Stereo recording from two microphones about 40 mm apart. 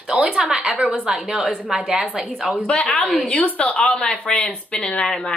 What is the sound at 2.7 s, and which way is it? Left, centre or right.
Speech, left.